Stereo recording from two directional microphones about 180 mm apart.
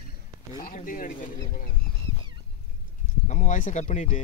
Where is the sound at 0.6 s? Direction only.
50° left (ahead or behind).